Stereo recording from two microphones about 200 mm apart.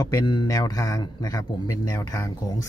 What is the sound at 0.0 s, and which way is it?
Speech, 15° left (ahead or behind).